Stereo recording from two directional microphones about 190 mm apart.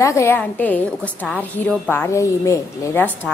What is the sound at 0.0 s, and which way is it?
A woman's voice, 15° left (ahead or behind).